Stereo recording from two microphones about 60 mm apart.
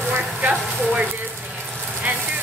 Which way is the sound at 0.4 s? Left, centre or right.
Right.